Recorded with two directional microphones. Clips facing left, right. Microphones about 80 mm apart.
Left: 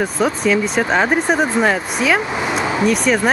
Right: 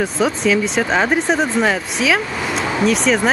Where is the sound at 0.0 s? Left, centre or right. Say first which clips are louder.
Even; centre.